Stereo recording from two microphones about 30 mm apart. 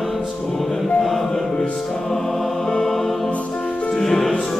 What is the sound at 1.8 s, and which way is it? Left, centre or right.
Music, centre.